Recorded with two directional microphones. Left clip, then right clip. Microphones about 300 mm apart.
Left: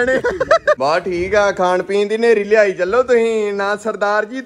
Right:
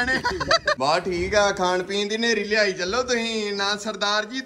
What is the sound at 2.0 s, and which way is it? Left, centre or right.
Speech, right.